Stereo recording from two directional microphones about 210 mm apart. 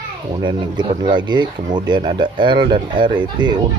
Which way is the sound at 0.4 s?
20° right (ahead or behind).